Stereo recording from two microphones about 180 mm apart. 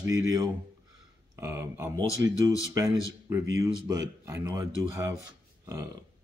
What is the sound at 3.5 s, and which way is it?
Speech, 20° right (ahead or behind).